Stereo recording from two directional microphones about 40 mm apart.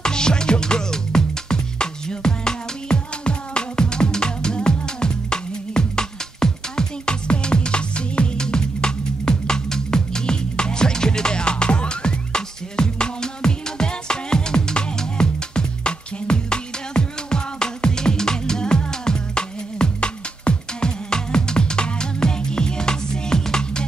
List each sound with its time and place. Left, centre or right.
0.0 s music: centre